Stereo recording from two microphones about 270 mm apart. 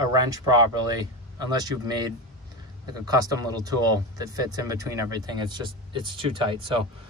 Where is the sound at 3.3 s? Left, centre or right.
Centre.